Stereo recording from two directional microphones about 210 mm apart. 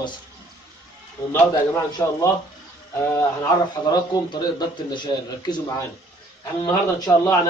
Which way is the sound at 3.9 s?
20° left (ahead or behind).